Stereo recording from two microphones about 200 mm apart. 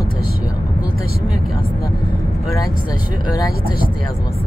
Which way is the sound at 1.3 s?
Centre (ahead or behind).